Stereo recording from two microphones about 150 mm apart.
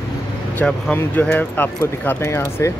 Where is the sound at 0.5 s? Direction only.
10° left (ahead or behind).